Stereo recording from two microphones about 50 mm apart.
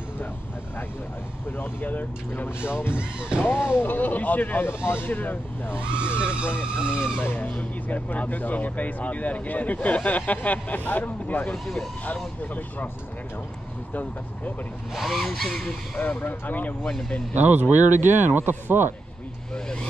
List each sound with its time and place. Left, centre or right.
1.6 s speech: left
2.7 s speech: left
3.0 s speech: centre
3.4 s speech: left
4.6 s speech: left
5.1 s speech: left
5.8 s speech: right
6.9 s speech: left
11.5 s speech: centre
12.5 s speech: left
15.0 s speech: centre
16.0 s speech: left
17.5 s speech: right
19.5 s vehicle: left